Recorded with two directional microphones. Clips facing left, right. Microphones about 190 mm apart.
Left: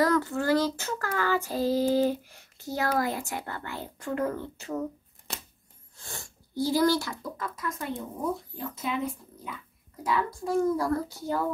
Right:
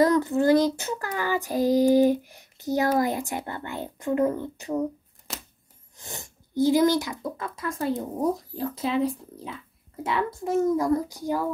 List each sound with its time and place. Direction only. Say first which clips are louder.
0.0 s child singing: right 5 dB; 20° right (ahead or behind)
5.3 s scissors: right 1 dB; centre (ahead or behind)
5.9 s speech: right 3 dB; 20° right (ahead or behind)